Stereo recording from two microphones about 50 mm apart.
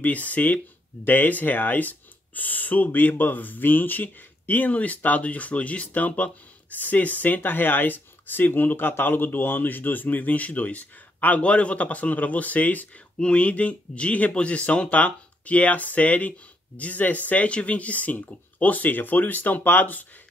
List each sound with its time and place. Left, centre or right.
0.0 s speech: left